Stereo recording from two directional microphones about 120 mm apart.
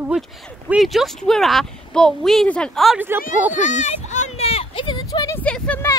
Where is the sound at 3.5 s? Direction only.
90° left; by 5.1 s 45° left (ahead or behind).